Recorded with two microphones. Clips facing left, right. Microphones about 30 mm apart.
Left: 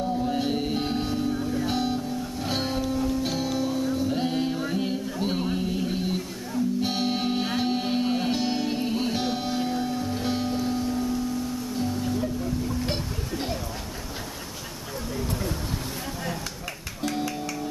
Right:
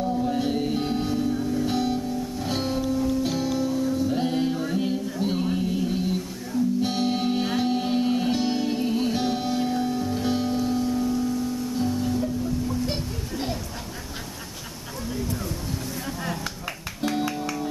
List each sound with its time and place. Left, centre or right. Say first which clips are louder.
0.0 s music: right 1 dB; centre
12.2 s music: right 2 dB; centre
12.9 s music: even; centre
17.0 s music: right 3 dB; centre